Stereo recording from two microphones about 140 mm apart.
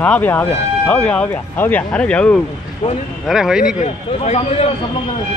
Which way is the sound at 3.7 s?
50° left (ahead or behind).